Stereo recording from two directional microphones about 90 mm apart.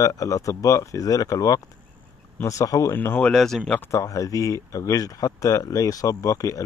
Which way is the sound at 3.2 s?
5° left (ahead or behind).